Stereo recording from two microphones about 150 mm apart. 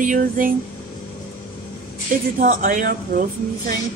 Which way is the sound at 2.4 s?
60° right (ahead or behind).